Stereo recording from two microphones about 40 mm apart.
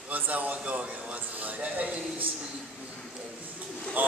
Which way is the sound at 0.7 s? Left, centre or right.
Right.